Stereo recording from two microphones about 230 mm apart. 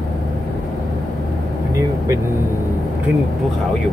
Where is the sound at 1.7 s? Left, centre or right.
Centre.